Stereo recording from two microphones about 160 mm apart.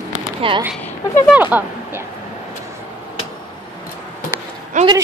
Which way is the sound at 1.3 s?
10° right (ahead or behind).